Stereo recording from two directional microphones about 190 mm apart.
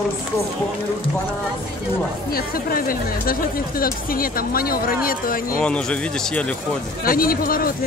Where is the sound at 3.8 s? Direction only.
50° left (ahead or behind).